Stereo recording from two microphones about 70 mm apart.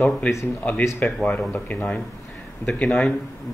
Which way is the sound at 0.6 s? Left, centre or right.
Left.